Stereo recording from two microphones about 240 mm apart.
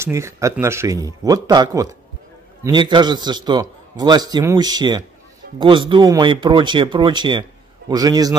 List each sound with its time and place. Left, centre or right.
0.0 s a man's voice: centre